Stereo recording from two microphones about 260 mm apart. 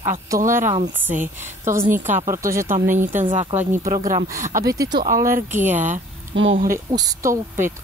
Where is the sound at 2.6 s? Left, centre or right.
Right.